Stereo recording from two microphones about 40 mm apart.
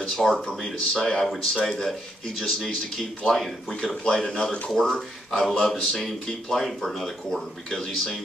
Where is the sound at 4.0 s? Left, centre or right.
Centre.